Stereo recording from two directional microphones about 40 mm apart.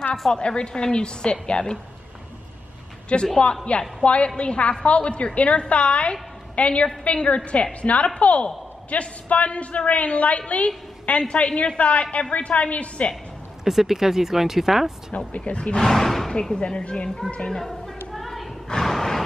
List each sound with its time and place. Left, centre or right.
0.3 s a woman's voice: left
3.1 s a woman's voice: left
13.7 s speech: centre
15.1 s a woman's voice: left
15.8 s speech: centre
16.3 s a woman's voice: left
18.1 s a sound: centre